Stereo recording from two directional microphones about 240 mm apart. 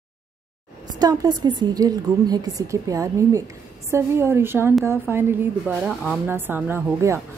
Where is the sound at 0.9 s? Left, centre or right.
Centre.